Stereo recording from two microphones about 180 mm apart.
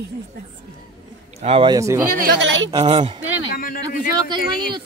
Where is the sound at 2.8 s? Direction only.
35° right (ahead or behind).